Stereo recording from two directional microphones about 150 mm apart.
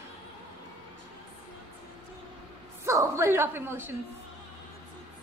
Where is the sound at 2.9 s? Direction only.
20° right (ahead or behind).